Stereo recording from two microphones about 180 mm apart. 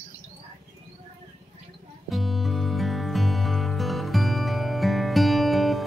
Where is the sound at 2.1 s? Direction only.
Centre (ahead or behind).